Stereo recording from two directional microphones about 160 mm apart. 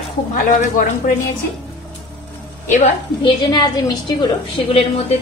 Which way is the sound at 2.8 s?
30° left (ahead or behind).